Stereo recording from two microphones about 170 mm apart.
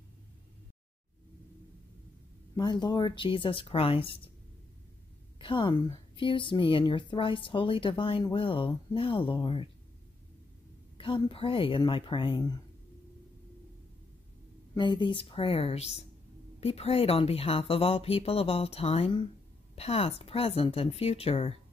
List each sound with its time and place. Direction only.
2.5 s a woman's voice: 25° left (ahead or behind)
5.4 s a woman's voice: 30° left (ahead or behind)
11.0 s a woman's voice: 30° left (ahead or behind)
14.8 s speech: 25° left (ahead or behind)